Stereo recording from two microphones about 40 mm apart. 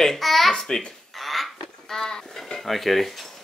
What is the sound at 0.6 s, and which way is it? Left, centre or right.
Speech, centre.